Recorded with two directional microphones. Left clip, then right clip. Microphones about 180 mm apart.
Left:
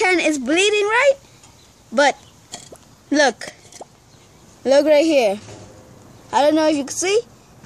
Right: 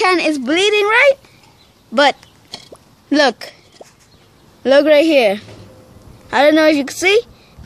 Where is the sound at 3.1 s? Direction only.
35° right (ahead or behind).